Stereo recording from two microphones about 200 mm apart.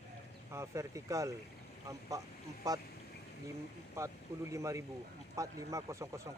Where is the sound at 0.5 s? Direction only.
15° right (ahead or behind).